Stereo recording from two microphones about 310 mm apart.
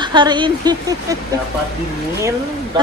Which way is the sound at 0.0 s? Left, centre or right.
Centre.